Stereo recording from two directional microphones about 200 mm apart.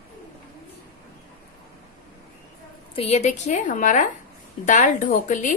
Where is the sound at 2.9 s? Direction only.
30° left (ahead or behind).